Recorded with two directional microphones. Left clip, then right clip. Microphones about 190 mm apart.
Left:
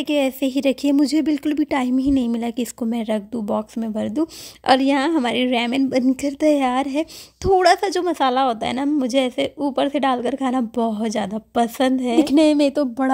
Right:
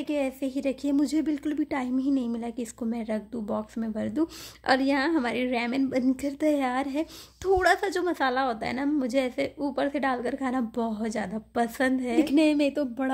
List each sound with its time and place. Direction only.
0.0 s speech: 45° left (ahead or behind)